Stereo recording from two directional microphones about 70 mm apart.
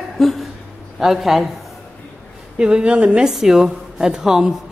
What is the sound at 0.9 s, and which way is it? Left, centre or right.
Speech, centre.